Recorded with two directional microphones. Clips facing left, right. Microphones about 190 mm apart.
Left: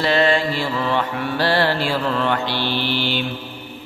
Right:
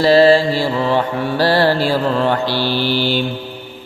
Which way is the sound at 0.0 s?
35° right (ahead or behind).